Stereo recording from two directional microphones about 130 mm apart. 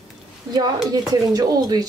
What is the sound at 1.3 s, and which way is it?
Speech, 30° right (ahead or behind).